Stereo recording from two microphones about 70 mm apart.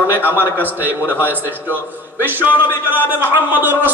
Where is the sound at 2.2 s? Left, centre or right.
Right.